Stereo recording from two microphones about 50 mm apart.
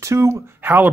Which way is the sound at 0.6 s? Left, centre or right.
Right.